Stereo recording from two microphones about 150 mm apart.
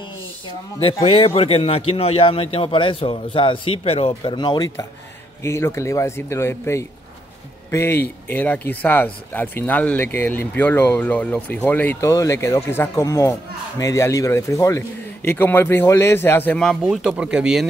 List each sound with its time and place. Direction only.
1.0 s a man's voice: 40° left (ahead or behind); by 16.7 s 10° left (ahead or behind)
16.8 s speech: 5° right (ahead or behind)